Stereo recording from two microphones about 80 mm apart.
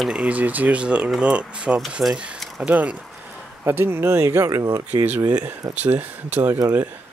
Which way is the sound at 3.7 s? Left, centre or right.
Right.